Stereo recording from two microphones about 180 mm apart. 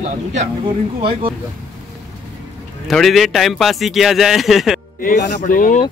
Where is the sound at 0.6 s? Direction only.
30° right (ahead or behind).